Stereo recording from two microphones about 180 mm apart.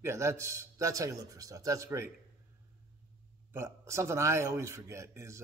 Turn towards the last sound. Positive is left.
turn(degrees=-15)  # may be behind; listen again after turning